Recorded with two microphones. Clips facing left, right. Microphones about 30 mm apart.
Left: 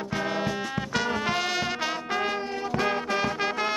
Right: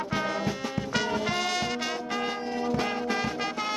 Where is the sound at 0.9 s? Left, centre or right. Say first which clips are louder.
Left 1 dB; centre.